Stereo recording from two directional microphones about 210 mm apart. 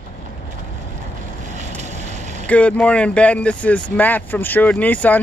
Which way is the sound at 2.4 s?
5° left (ahead or behind).